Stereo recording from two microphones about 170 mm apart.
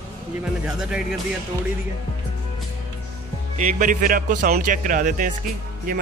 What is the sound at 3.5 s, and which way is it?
A man's voice, 45° right (ahead or behind).